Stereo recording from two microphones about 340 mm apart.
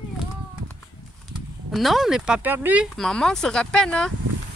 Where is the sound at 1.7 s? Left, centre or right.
Centre.